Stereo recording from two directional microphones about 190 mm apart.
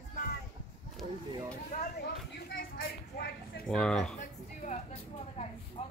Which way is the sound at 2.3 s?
65° left (ahead or behind).